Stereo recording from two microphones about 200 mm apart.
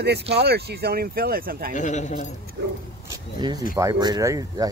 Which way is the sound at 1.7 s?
35° left (ahead or behind).